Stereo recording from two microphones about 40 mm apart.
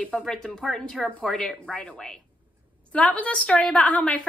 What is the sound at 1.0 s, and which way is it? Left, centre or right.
Speech, left.